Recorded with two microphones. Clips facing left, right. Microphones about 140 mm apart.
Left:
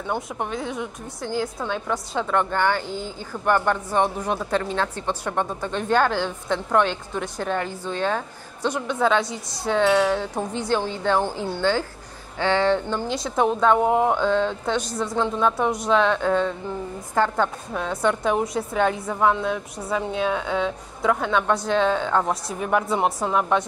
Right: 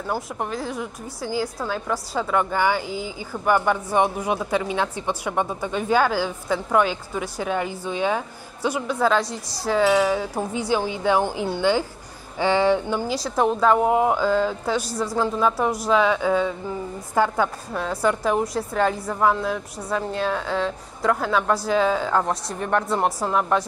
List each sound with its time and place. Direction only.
0.1 s a woman's voice: centre (ahead or behind)